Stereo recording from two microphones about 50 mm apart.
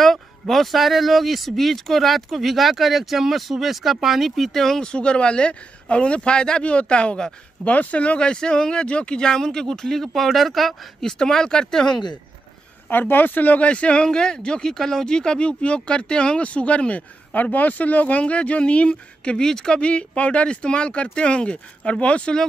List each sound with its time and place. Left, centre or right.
0.0 s speech: centre
4.6 s speech: centre
11.1 s speech: centre
12.9 s speech: left
13.7 s speech: left
17.3 s speech: left